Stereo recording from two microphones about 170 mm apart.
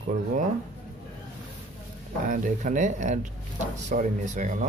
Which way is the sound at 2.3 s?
45° right (ahead or behind).